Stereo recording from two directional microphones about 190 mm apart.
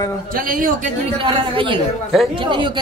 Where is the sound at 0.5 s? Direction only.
45° right (ahead or behind).